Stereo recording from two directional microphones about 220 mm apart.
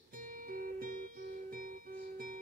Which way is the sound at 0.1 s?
40° right (ahead or behind).